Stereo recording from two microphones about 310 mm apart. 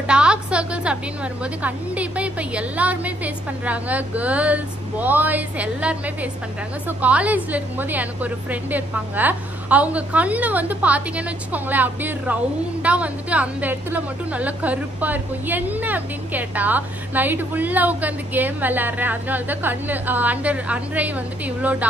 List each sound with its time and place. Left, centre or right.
0.0 s a woman's voice: centre